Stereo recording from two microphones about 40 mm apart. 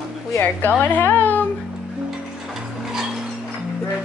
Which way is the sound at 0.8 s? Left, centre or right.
Left.